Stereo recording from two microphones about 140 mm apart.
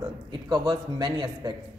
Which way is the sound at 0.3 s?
30° right (ahead or behind).